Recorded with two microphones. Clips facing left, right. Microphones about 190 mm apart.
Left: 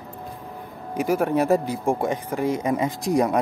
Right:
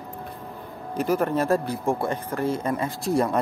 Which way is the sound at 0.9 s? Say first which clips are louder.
Left 2 dB; 10° left (ahead or behind).